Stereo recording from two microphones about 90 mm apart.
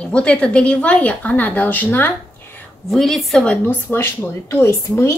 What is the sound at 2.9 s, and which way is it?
Speech, centre (ahead or behind).